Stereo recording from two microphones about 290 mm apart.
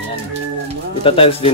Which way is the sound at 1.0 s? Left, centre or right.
Centre.